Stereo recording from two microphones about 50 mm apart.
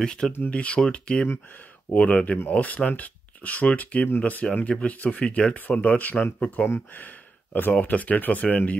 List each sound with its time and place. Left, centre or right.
0.0 s speech: centre
0.5 s speech: left
0.7 s speech: centre
6.9 s a sound: left
7.7 s speech: left